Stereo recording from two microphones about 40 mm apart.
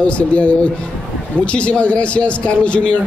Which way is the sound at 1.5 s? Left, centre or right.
Left.